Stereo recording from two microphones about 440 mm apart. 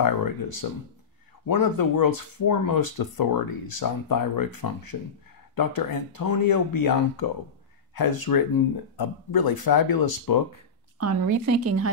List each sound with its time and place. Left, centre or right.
0.6 s speech: left
11.0 s a woman's voice: right